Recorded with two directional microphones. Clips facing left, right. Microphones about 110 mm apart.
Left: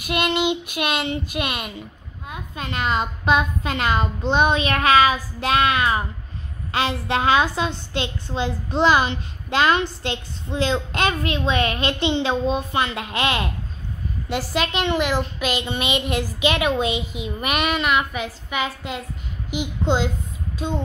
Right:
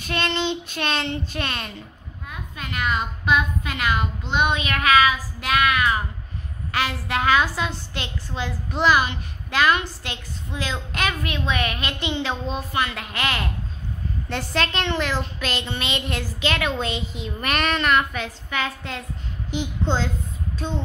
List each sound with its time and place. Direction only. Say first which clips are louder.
0.0 s a woman's voice: left 3 dB; 15° left (ahead or behind)
2.2 s a woman's voice: left 4 dB; 25° left (ahead or behind)
14.3 s a woman's voice: left 2 dB; 5° left (ahead or behind)
20.5 s a sound: left 3 dB; 15° left (ahead or behind)